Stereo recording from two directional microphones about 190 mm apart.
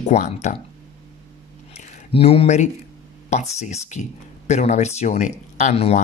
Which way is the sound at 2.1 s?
30° left (ahead or behind).